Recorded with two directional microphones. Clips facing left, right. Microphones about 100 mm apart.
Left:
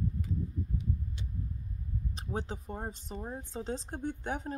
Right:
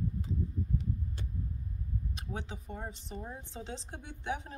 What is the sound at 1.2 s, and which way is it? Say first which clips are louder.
Vehicle: even; 50° right (ahead or behind).